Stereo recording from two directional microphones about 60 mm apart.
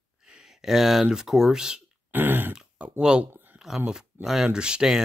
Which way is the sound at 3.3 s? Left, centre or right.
Right.